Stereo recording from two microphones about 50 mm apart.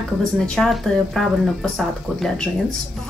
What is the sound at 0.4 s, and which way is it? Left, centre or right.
Speech, centre.